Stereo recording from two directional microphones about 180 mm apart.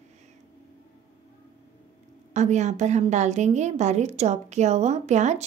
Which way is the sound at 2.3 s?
40° right (ahead or behind).